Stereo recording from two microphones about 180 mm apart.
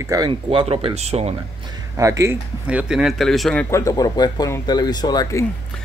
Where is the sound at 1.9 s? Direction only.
15° right (ahead or behind); by 3.6 s centre (ahead or behind).